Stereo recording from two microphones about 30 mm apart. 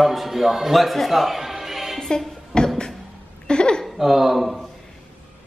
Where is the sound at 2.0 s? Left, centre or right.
Centre.